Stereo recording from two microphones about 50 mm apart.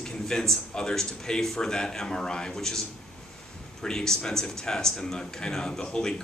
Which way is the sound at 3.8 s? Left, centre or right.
Centre.